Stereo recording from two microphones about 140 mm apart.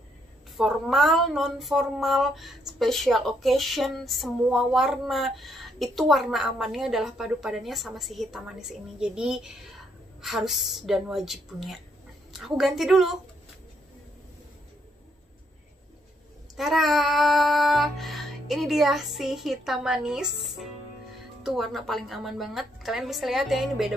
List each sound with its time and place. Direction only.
0.6 s speech: centre (ahead or behind)
16.5 s speech: centre (ahead or behind)